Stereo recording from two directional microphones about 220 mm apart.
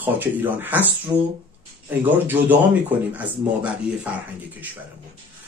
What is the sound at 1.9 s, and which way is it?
Speech, 10° right (ahead or behind).